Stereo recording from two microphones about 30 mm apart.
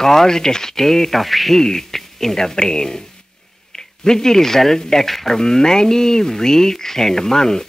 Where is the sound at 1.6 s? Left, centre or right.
Centre.